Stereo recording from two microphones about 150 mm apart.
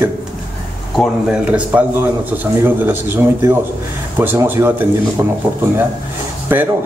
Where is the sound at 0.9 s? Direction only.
5° right (ahead or behind).